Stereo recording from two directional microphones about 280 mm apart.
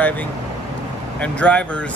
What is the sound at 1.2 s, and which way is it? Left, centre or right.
Speech, centre.